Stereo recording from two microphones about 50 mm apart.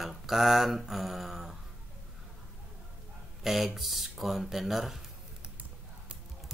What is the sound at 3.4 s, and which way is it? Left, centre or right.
Speech, centre.